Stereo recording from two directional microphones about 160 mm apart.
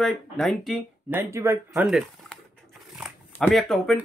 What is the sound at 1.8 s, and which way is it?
Crumpling, centre (ahead or behind).